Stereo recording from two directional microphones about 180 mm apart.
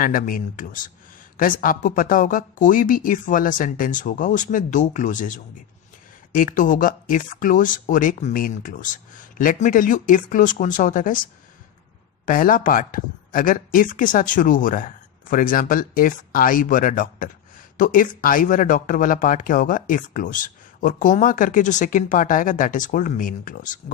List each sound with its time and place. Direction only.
0.0 s speech: 50° left (ahead or behind)
12.3 s speech: 50° left (ahead or behind)